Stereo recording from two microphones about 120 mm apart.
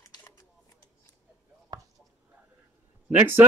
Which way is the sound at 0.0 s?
25° left (ahead or behind).